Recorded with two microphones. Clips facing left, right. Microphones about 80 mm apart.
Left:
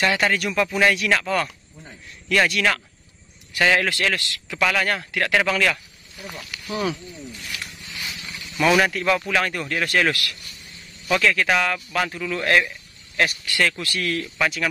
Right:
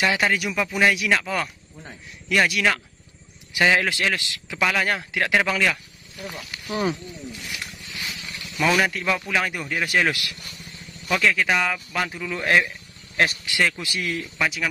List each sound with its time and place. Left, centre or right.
0.0 s a man's voice: centre
6.7 s speech: right
7.4 s a man's voice: centre
13.1 s a man's voice: right; by 14.7 s centre